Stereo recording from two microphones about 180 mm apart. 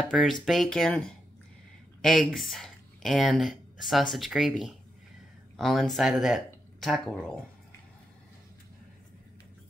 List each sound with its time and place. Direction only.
0.0 s speech: centre (ahead or behind)